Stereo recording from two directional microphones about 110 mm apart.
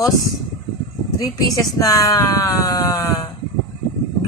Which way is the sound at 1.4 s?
35° left (ahead or behind).